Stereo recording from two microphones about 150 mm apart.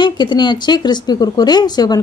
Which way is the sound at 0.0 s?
30° left (ahead or behind).